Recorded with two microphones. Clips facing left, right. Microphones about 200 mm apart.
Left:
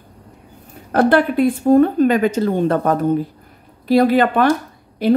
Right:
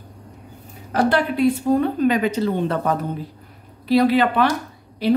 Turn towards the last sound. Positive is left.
turn(degrees=50)  # may be behind; listen again after turning